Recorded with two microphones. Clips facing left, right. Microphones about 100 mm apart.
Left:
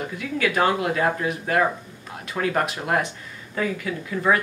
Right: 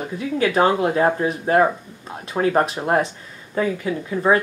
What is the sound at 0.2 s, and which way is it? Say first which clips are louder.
Speech: right 4 dB; 30° right (ahead or behind).